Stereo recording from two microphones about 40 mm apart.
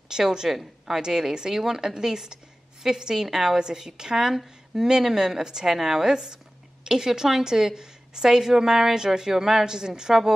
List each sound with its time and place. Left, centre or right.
0.1 s a woman's voice: centre